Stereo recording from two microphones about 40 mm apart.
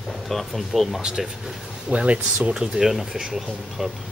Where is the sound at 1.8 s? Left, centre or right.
Right.